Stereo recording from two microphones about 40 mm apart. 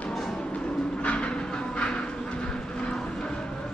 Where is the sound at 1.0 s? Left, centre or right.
Left.